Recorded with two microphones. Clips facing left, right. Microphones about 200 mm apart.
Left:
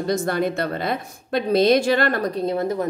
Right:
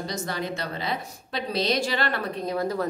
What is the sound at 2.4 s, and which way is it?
Speech, 25° left (ahead or behind).